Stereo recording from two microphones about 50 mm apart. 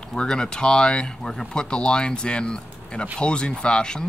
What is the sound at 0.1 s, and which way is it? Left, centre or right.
Speech, centre.